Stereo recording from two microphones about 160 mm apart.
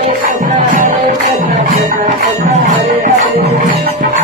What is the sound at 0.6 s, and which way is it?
Music, 55° right (ahead or behind).